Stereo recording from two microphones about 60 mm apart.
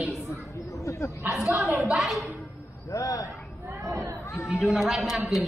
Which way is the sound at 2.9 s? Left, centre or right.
Left.